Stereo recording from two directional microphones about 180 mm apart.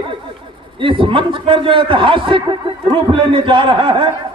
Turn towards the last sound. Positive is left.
turn(degrees=-25)  # may be behind; listen again after turning